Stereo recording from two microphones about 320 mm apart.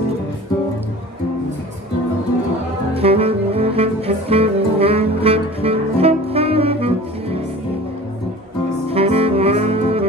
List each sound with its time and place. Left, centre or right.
2.9 s saxophone: centre
8.9 s saxophone: centre